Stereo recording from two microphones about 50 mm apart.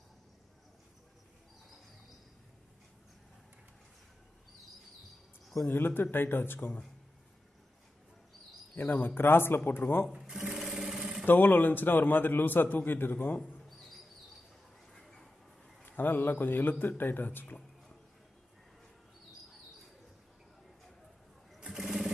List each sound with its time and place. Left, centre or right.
5.7 s speech: left
8.7 s speech: left
10.1 s sewing machine: centre
11.2 s a man's voice: left
14.9 s a sound: centre
15.8 s a man's voice: left
21.5 s sewing machine: centre